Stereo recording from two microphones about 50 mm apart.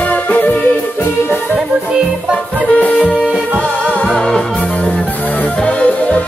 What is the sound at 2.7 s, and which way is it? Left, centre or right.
Music, left.